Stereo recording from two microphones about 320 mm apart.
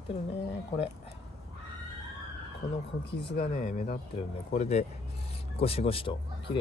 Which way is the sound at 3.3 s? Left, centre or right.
Left.